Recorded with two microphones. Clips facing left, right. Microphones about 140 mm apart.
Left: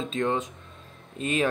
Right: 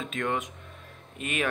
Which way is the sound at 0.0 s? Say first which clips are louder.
Left 4 dB; 30° left (ahead or behind).